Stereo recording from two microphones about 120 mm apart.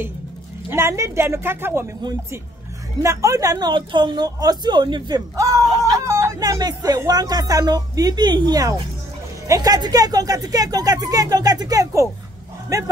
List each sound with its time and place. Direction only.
0.7 s speech: 25° right (ahead or behind)
3.0 s speech: 25° right (ahead or behind)